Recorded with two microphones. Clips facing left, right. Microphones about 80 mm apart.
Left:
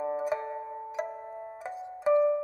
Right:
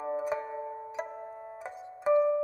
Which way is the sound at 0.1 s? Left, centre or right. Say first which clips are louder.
Left 1 dB; centre.